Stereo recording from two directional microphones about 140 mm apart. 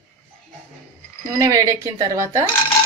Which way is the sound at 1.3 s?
25° right (ahead or behind).